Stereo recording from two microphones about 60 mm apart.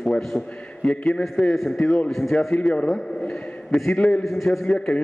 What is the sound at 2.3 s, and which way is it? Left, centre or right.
A man's voice, centre.